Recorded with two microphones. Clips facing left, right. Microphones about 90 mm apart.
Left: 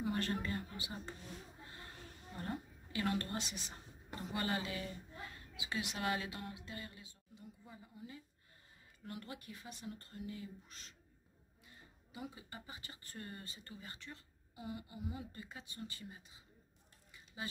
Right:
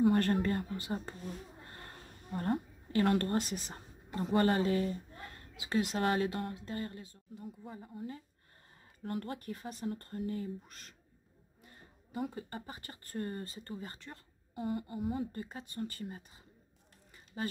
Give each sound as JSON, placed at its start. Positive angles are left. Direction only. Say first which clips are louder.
{"t": 0.0, "sound": "a woman's voice", "louder": "right 10 dB", "side_deg": -55}
{"t": 11.6, "sound": "a sound", "louder": "right 4 dB", "side_deg": -45}
{"t": 12.5, "sound": "speech", "louder": "right 7 dB", "side_deg": -45}
{"t": 17.4, "sound": "speech", "louder": "right 8 dB", "side_deg": -50}